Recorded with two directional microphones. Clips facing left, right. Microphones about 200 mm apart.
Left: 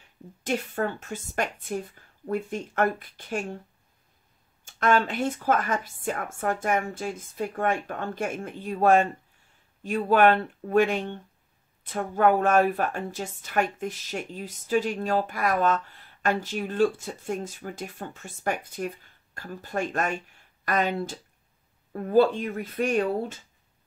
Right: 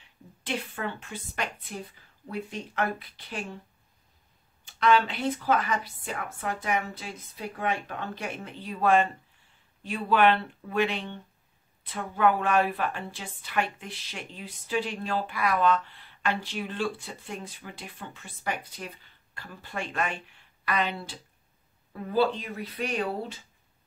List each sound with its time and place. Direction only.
0.4 s a woman's voice: 45° left (ahead or behind)
4.6 s a woman's voice: 45° left (ahead or behind)